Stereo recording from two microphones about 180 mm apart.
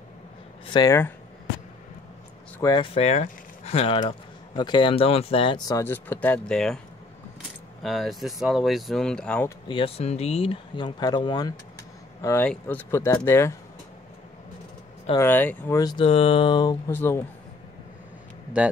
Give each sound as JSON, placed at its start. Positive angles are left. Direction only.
{"t": 0.7, "sound": "speech", "side_deg": 15}
{"t": 2.6, "sound": "speech", "side_deg": 25}
{"t": 5.8, "sound": "speech", "side_deg": 10}
{"t": 7.8, "sound": "speech", "side_deg": 0}
{"t": 9.7, "sound": "speech", "side_deg": 30}
{"t": 15.1, "sound": "speech", "side_deg": 10}
{"t": 15.8, "sound": "speech", "side_deg": 25}
{"t": 16.9, "sound": "speech", "side_deg": 10}